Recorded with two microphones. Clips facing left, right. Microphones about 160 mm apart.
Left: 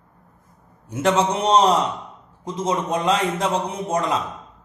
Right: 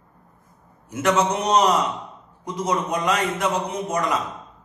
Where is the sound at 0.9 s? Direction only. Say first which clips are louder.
Left 1 dB; 30° left (ahead or behind).